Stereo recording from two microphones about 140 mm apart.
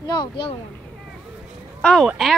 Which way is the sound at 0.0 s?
30° left (ahead or behind).